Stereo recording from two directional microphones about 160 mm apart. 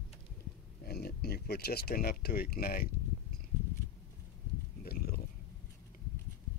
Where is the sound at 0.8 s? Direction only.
75° left (ahead or behind).